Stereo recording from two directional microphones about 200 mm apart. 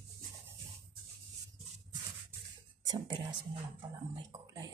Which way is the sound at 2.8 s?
20° right (ahead or behind).